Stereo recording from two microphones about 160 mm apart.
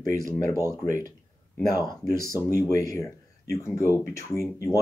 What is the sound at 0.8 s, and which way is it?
Speech, 20° left (ahead or behind).